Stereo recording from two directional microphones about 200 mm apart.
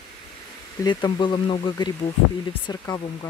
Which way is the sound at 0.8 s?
25° left (ahead or behind).